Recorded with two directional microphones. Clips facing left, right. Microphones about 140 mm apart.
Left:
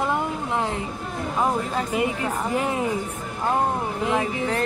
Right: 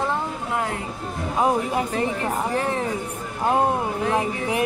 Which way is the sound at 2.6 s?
15° left (ahead or behind).